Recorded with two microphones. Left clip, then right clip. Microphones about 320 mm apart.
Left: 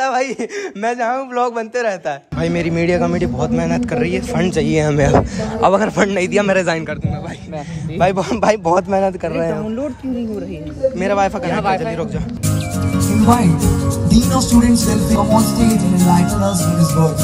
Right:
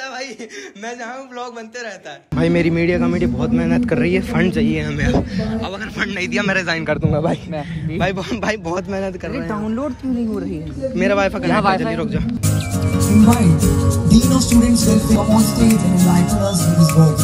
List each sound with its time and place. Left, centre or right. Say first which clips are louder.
0.0 s a sound: left 11 dB; centre
0.8 s a man's voice: left 11 dB; left
2.3 s a man's voice: right 4 dB; centre
8.0 s a man's voice: left 7 dB; centre
11.0 s a man's voice: right 3 dB; centre